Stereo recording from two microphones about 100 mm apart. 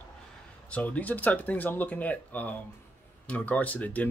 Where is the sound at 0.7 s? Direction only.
15° left (ahead or behind).